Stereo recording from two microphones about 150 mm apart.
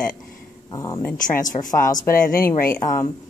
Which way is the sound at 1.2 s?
60° left (ahead or behind).